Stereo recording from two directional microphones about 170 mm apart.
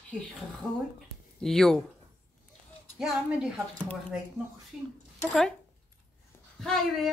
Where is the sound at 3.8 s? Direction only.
5° left (ahead or behind).